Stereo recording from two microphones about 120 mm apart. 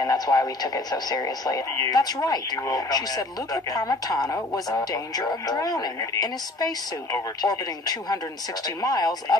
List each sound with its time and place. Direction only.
0.0 s speech: 30° left (ahead or behind)